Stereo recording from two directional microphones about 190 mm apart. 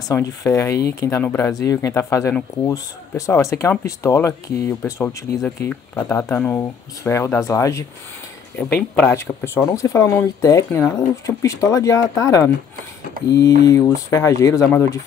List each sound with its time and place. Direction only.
0.1 s speech: 15° left (ahead or behind)
13.2 s a sound: 50° right (ahead or behind)
13.6 s speech: 15° left (ahead or behind)